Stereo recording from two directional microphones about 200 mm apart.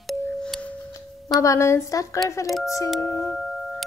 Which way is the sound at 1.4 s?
15° left (ahead or behind).